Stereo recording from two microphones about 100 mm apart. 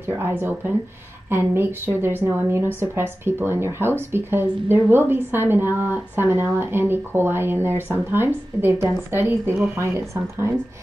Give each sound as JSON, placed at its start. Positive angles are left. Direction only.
{"t": 0.0, "sound": "a woman's voice", "side_deg": -20}